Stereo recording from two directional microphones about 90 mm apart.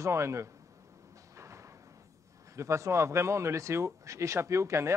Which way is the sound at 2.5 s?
35° right (ahead or behind).